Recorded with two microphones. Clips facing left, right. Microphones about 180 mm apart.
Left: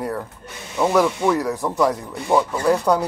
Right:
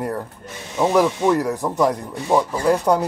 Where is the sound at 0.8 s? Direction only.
15° right (ahead or behind).